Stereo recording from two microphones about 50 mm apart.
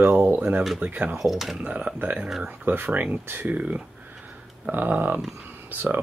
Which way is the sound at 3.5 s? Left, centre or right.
Right.